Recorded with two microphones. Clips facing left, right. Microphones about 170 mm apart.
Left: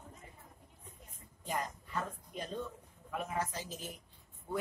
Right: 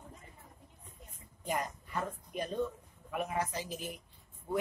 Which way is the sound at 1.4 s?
15° right (ahead or behind).